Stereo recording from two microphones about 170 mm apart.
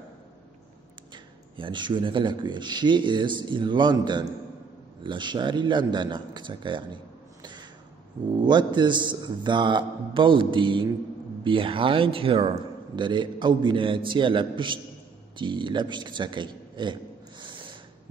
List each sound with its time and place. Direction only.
1.1 s a man's voice: 25° right (ahead or behind)
8.3 s a man's voice: 25° right (ahead or behind)